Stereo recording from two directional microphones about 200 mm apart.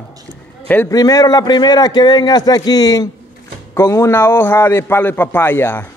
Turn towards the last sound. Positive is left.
turn(degrees=10)  # may be behind; listen again after turning